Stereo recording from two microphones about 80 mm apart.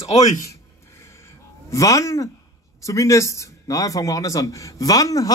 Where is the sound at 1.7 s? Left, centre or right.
Left.